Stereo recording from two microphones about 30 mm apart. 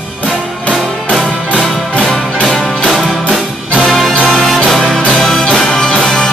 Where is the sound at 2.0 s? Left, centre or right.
Centre.